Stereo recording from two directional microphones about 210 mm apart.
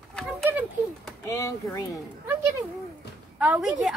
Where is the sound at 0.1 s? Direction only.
Centre (ahead or behind).